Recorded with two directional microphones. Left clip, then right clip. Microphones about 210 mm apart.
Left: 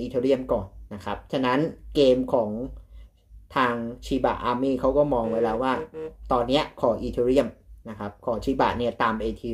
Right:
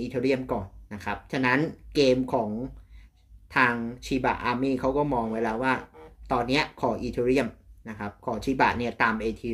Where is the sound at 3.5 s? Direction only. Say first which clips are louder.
Right 1 dB; centre (ahead or behind).